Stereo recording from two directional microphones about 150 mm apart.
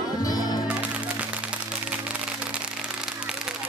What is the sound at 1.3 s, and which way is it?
Music, 10° right (ahead or behind).